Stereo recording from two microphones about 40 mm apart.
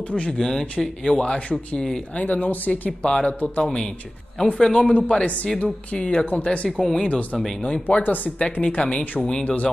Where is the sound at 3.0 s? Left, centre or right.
Left.